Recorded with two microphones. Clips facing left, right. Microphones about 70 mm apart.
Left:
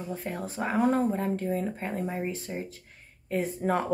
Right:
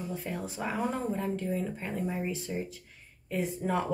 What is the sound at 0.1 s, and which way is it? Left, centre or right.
Speech, left.